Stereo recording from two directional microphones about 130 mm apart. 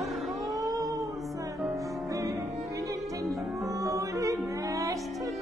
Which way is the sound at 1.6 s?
25° right (ahead or behind).